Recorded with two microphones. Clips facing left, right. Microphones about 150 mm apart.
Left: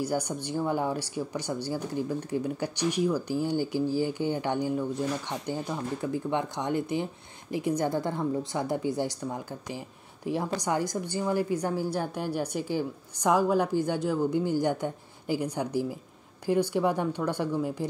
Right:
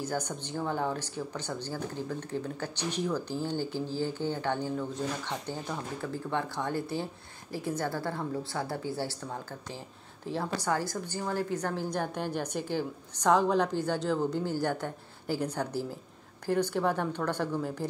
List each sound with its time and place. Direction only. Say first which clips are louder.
0.0 s a woman's voice: left 4 dB; 10° left (ahead or behind)